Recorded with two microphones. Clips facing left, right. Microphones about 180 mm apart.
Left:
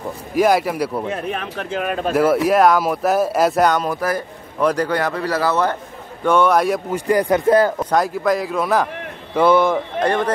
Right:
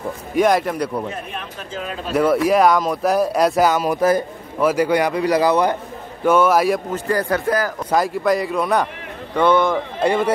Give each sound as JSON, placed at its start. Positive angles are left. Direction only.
{"t": 0.3, "sound": "speech", "side_deg": 5}
{"t": 1.1, "sound": "a man's voice", "side_deg": 65}
{"t": 2.1, "sound": "speech", "side_deg": 0}
{"t": 3.9, "sound": "speech", "side_deg": -20}
{"t": 4.6, "sound": "a man's voice", "side_deg": -10}
{"t": 6.9, "sound": "speech", "side_deg": 15}
{"t": 7.9, "sound": "speech", "side_deg": 0}
{"t": 9.9, "sound": "a man's voice", "side_deg": -10}